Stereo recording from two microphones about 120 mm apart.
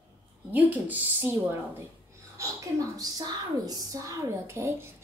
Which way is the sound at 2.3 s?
30° right (ahead or behind).